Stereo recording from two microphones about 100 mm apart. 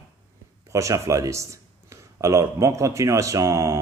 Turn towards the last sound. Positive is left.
turn(degrees=-30)  # may be behind; listen again after turning